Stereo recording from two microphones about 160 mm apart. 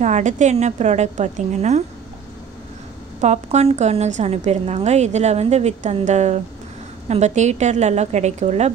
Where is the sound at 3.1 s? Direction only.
45° right (ahead or behind).